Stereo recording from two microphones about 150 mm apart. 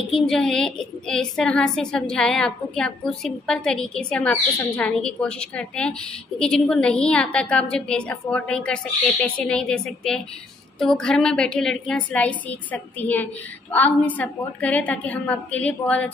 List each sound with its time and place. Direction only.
0.1 s a woman's voice: 5° left (ahead or behind)